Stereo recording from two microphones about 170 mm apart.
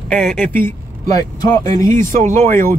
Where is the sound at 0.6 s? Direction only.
20° left (ahead or behind).